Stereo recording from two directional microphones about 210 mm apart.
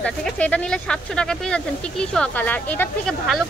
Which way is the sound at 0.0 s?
5° left (ahead or behind).